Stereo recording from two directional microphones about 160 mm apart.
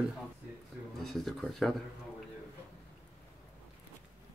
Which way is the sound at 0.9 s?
Centre (ahead or behind).